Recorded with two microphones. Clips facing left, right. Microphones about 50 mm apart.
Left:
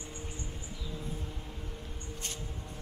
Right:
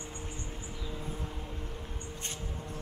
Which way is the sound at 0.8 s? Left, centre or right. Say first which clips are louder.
Right 1 dB; centre.